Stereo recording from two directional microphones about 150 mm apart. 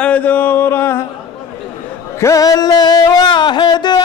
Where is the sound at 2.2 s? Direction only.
25° left (ahead or behind).